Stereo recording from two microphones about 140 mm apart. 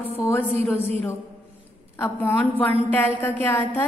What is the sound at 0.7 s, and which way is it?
Speech, 45° right (ahead or behind).